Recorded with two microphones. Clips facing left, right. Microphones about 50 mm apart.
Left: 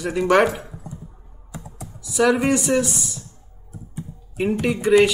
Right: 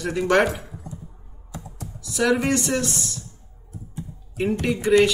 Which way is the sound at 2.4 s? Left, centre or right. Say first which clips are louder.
Left 3 dB; centre.